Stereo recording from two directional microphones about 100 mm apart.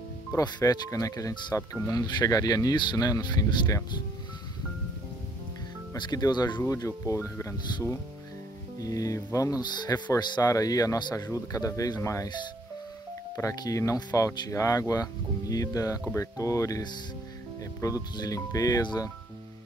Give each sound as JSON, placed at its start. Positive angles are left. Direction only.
{"t": 0.4, "sound": "speech", "side_deg": 40}
{"t": 5.9, "sound": "speech", "side_deg": 45}
{"t": 6.6, "sound": "speech", "side_deg": 30}
{"t": 13.4, "sound": "speech", "side_deg": 35}